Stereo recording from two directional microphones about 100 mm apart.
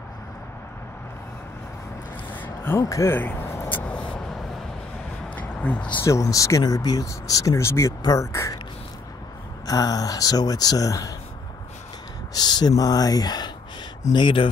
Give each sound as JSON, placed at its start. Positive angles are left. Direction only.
{"t": 2.4, "sound": "a sound", "side_deg": 20}
{"t": 2.8, "sound": "speech", "side_deg": 30}
{"t": 3.2, "sound": "vehicle", "side_deg": 20}
{"t": 5.3, "sound": "a sound", "side_deg": 15}
{"t": 5.9, "sound": "speech", "side_deg": 30}
{"t": 9.7, "sound": "speech", "side_deg": 40}
{"t": 12.4, "sound": "speech", "side_deg": 45}
{"t": 14.1, "sound": "speech", "side_deg": 55}